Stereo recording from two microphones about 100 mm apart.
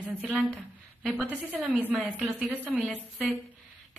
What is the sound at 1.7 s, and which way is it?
Speech, 15° right (ahead or behind).